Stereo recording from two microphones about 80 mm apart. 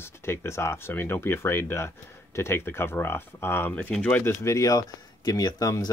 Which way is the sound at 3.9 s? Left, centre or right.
Centre.